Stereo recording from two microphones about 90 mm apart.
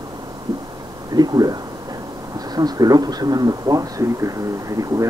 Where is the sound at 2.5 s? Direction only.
45° right (ahead or behind).